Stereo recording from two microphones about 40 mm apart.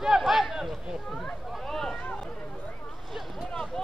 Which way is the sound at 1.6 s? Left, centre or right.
Centre.